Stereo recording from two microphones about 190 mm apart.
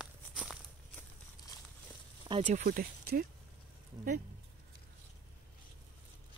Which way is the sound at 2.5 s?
45° right (ahead or behind).